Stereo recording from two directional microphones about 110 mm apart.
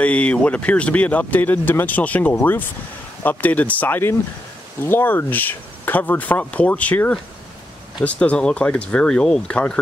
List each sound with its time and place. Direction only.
0.0 s speech: 10° left (ahead or behind)